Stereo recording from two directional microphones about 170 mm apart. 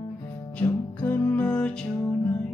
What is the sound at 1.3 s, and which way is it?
Music, 10° left (ahead or behind).